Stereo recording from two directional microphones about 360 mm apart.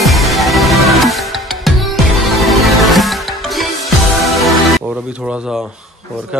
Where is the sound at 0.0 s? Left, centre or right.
Centre.